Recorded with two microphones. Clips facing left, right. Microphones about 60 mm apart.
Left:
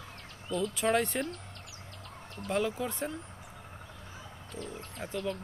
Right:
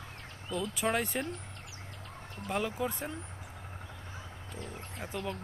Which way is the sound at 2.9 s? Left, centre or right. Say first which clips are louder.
Left 3 dB; centre.